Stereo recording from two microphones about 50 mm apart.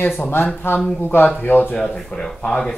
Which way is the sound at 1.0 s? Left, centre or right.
Left.